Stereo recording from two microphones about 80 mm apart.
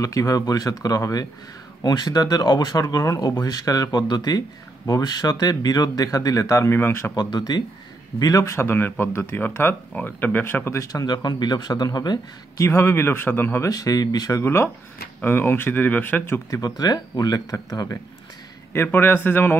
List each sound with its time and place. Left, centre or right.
0.0 s speech: left
6.7 s speech: left
7.2 s speech: left
8.2 s speech: left
8.5 s speech: left
12.6 s speech: left
13.7 s speech: left
14.4 s speech: left
16.4 s speech: left
18.7 s speech: left